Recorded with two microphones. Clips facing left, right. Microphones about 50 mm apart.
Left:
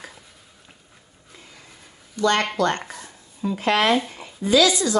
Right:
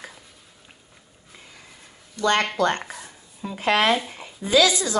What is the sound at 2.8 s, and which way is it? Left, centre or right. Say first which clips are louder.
Speech: even; centre.